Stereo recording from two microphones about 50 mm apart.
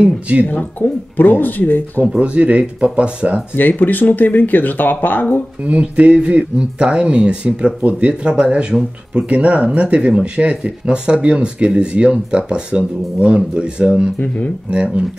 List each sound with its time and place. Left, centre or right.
0.0 s speech: right
0.7 s speech: left
2.1 s speech: right
3.5 s speech: left
5.6 s speech: right
14.2 s speech: left
14.7 s speech: centre